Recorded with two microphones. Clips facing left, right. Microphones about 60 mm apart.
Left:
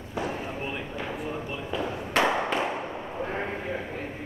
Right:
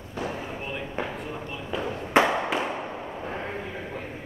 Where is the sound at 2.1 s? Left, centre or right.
Right.